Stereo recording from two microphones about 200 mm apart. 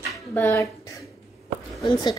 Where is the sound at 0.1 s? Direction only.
10° left (ahead or behind).